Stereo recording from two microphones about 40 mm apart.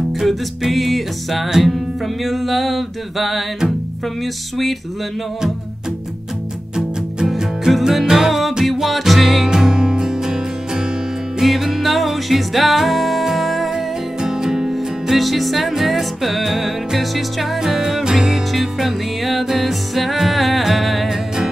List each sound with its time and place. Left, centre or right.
0.2 s music: centre
7.8 s music: centre
9.5 s music: centre